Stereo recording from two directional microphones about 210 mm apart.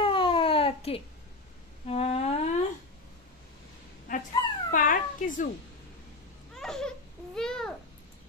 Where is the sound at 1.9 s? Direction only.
30° left (ahead or behind).